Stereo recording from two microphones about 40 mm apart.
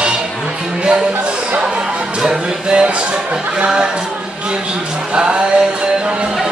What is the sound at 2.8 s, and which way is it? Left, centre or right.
Speech, right.